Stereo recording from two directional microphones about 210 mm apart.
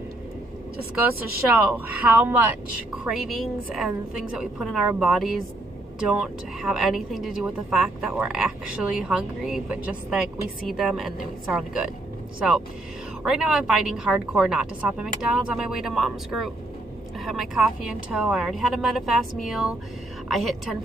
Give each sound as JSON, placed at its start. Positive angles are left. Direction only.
{"t": 1.5, "sound": "a woman's voice", "side_deg": -5}